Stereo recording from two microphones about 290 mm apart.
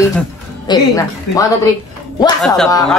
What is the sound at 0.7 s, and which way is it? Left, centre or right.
Speech, centre.